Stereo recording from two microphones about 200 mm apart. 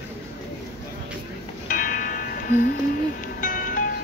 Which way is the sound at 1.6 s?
45° left (ahead or behind).